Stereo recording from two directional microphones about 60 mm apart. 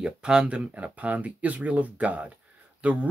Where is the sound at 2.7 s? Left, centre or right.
Right.